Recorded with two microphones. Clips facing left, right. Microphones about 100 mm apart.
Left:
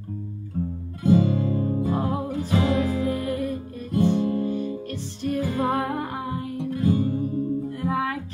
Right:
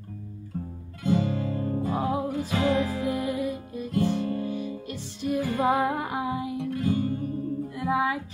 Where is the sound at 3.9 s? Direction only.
20° left (ahead or behind).